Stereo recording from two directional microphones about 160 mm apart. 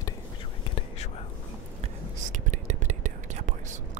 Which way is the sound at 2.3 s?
50° right (ahead or behind).